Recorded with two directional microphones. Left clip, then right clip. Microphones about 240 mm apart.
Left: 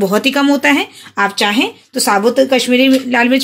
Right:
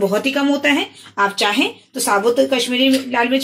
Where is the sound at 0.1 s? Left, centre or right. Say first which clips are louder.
Left 5 dB; left.